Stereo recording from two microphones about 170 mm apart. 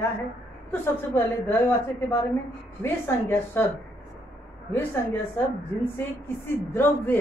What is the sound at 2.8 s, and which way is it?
Speech, 15° left (ahead or behind).